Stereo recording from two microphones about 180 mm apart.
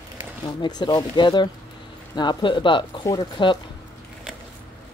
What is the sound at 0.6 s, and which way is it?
Speech, 25° left (ahead or behind).